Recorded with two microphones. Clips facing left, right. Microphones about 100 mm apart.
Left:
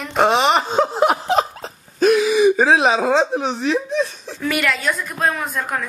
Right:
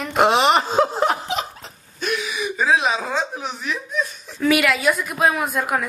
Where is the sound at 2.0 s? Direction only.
40° left (ahead or behind).